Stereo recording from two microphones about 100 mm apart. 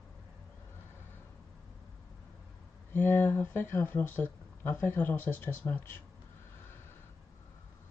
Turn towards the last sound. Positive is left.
turn(degrees=20)  # may be behind; listen again after turning